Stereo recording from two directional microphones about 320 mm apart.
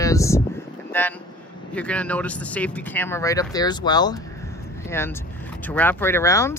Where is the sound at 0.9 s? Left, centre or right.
Centre.